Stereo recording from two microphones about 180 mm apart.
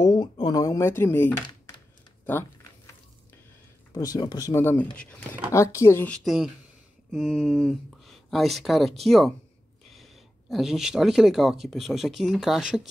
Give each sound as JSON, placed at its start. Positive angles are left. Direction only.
{"t": 0.0, "sound": "speech", "side_deg": 20}
{"t": 3.9, "sound": "a woman's voice", "side_deg": 20}